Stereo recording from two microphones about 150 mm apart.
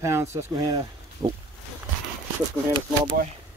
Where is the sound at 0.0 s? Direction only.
20° right (ahead or behind).